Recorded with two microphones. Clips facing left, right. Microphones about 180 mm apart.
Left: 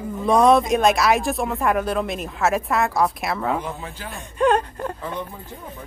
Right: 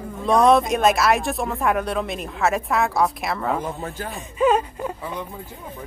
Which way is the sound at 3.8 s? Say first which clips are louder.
Right 4 dB; 45° right (ahead or behind).